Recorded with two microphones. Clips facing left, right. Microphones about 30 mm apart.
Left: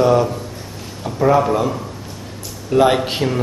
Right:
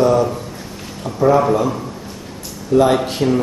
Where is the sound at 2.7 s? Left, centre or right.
Left.